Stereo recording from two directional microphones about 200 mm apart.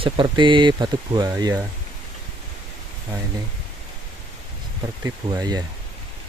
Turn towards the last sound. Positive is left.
turn(degrees=-20)  # may be behind; listen again after turning